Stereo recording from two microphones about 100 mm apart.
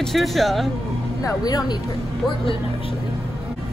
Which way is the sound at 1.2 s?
35° left (ahead or behind).